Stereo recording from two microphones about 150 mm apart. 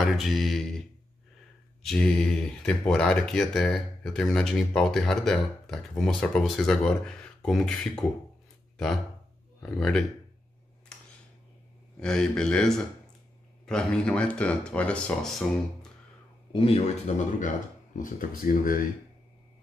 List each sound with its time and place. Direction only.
0.0 s speech: centre (ahead or behind)
9.8 s speech: centre (ahead or behind)
10.9 s a sound: 5° left (ahead or behind)
12.0 s speech: 5° left (ahead or behind)
16.5 s speech: 45° left (ahead or behind)
17.9 s speech: 65° left (ahead or behind)